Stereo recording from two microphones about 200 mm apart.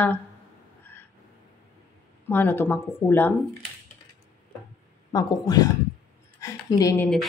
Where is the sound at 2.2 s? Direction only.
10° left (ahead or behind).